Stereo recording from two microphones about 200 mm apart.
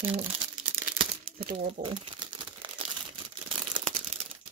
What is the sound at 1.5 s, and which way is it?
Crumpling, 30° right (ahead or behind).